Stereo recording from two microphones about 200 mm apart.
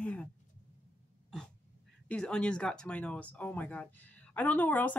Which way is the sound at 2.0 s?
5° left (ahead or behind).